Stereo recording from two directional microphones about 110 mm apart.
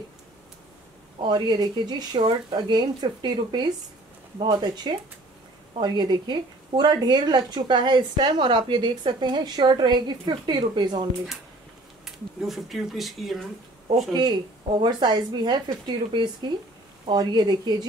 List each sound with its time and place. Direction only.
1.2 s a woman's voice: 45° right (ahead or behind)
12.0 s speech: centre (ahead or behind)
14.1 s speech: 40° right (ahead or behind)